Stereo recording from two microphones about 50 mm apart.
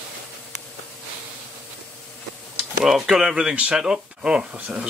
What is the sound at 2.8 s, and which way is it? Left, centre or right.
Speech, centre.